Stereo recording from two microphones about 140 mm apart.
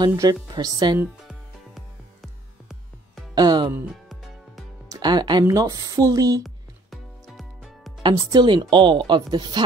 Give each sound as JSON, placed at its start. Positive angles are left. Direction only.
{"t": 0.1, "sound": "speech", "side_deg": -25}
{"t": 2.2, "sound": "music", "side_deg": 0}
{"t": 3.3, "sound": "speech", "side_deg": -30}
{"t": 4.8, "sound": "music", "side_deg": -30}
{"t": 5.4, "sound": "speech", "side_deg": -25}
{"t": 6.4, "sound": "music", "side_deg": 0}
{"t": 8.0, "sound": "speech", "side_deg": -30}